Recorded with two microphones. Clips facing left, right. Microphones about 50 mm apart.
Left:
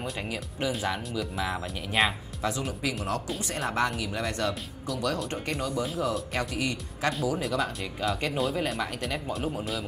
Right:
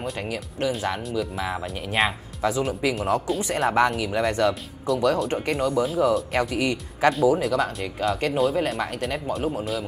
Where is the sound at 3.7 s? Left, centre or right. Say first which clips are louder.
Right 7 dB; right.